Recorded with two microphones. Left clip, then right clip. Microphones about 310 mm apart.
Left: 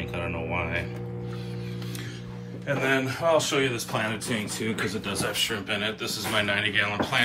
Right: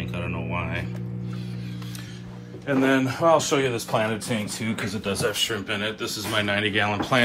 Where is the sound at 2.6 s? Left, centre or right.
Centre.